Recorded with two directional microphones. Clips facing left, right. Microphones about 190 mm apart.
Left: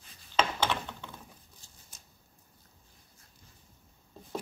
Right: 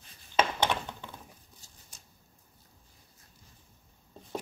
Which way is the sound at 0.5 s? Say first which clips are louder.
Right 2 dB; 15° right (ahead or behind).